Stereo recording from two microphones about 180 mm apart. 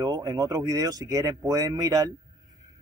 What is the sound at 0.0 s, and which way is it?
Speech, 20° right (ahead or behind).